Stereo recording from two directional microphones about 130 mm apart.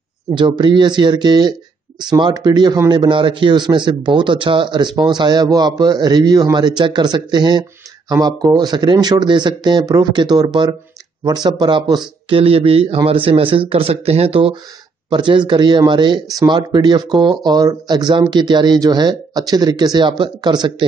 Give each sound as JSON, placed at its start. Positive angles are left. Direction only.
{"t": 0.3, "sound": "a man's voice", "side_deg": -35}
{"t": 15.0, "sound": "a man's voice", "side_deg": -35}